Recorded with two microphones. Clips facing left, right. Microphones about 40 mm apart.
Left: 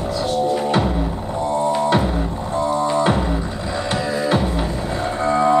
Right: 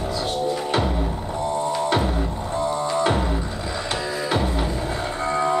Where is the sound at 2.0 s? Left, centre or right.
Centre.